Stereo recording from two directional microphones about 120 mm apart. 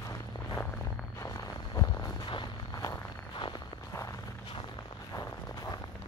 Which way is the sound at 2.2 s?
40° left (ahead or behind).